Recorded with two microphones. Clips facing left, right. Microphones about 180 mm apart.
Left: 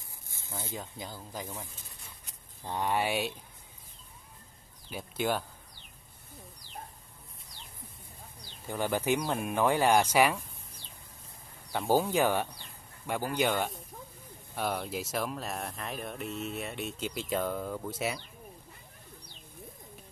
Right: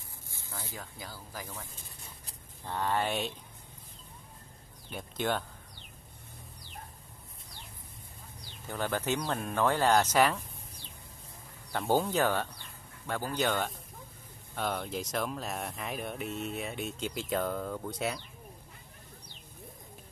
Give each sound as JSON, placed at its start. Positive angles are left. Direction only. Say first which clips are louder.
{"t": 0.5, "sound": "speech", "louder": "left 4 dB", "side_deg": 20}
{"t": 4.8, "sound": "speech", "louder": "left 1 dB", "side_deg": 5}
{"t": 8.6, "sound": "speech", "louder": "left 3 dB", "side_deg": 10}
{"t": 11.7, "sound": "speech", "louder": "left 1 dB", "side_deg": 5}